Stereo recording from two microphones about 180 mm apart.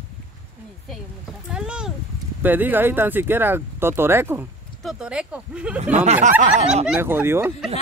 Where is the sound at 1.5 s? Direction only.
5° right (ahead or behind).